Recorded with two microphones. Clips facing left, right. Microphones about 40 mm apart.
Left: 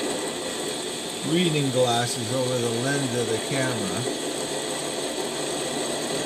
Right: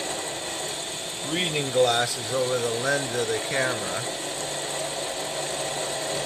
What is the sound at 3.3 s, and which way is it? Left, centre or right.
Speech, centre.